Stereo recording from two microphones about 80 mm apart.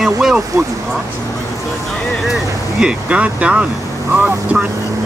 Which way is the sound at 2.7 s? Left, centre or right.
Centre.